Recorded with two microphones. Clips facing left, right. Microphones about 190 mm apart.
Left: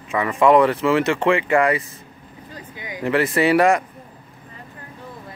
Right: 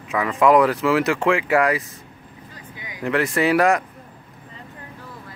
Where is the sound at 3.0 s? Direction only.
Centre (ahead or behind).